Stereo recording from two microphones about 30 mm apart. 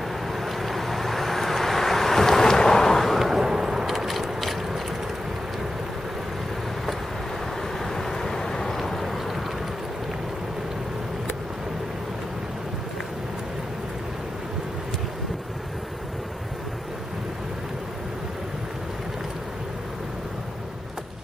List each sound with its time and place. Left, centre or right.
0.3 s vehicle: centre
3.2 s vehicle: centre
7.8 s vehicle: centre
8.7 s vehicle: centre